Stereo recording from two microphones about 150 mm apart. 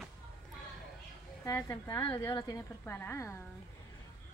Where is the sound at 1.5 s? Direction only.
20° left (ahead or behind).